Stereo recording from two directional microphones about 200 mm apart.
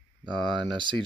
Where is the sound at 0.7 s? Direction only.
25° right (ahead or behind).